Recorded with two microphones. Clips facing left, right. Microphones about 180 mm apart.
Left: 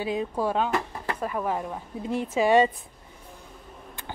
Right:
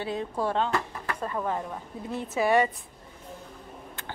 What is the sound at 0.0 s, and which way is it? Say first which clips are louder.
A woman's voice: left 3 dB; 15° left (ahead or behind).